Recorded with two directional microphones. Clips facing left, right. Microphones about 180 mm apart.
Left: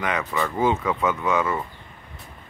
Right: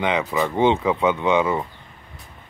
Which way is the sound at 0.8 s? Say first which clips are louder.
Right 4 dB; 15° right (ahead or behind).